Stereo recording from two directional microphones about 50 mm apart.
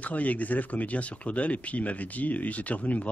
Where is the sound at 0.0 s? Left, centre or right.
Left.